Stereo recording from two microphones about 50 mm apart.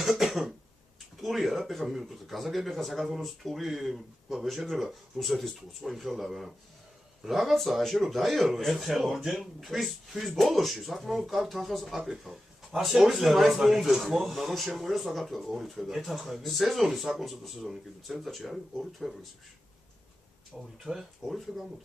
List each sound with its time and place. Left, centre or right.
0.0 s cough: centre
1.2 s speech: centre
20.8 s speech: centre